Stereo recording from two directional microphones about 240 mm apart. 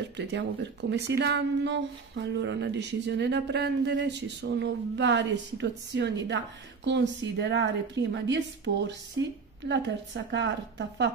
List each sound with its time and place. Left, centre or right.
0.2 s speech: right